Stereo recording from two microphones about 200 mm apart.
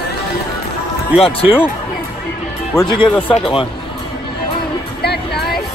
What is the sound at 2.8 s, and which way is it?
Speech, 5° left (ahead or behind).